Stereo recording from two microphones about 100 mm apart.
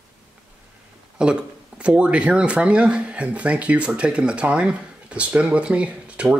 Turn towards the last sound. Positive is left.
turn(degrees=-15)  # may be behind; listen again after turning